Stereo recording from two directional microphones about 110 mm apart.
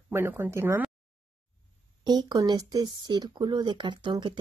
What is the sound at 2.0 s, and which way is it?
Speech, 40° right (ahead or behind).